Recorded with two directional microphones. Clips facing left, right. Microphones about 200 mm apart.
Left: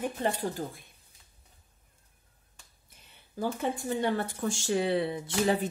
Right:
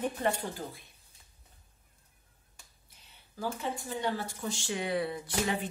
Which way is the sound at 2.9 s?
55° left (ahead or behind).